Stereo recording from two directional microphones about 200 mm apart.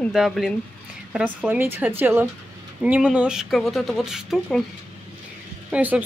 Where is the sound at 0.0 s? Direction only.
Centre (ahead or behind).